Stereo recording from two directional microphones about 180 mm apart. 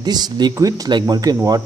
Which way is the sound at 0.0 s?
25° right (ahead or behind).